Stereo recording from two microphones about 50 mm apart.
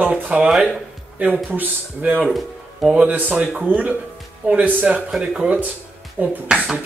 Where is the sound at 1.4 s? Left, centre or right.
Right.